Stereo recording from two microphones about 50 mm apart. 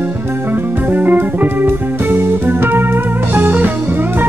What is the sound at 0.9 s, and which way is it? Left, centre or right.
Music, right.